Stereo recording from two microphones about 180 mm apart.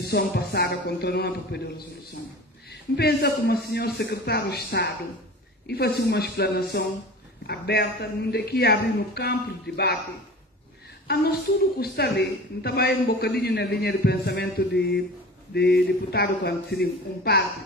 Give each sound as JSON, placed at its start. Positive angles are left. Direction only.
{"t": 0.0, "sound": "speech", "side_deg": 65}
{"t": 3.0, "sound": "speech", "side_deg": 65}
{"t": 11.1, "sound": "speech", "side_deg": 60}